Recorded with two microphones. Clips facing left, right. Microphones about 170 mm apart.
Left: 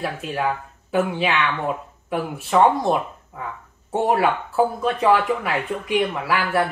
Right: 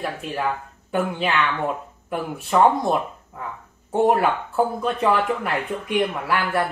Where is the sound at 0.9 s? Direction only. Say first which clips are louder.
Left 2 dB; centre (ahead or behind).